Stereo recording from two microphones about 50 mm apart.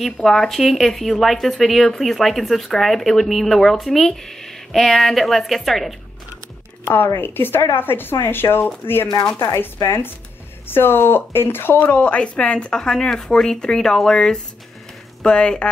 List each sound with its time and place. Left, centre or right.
0.0 s speech: centre
6.8 s a woman's voice: left
11.9 s speech: left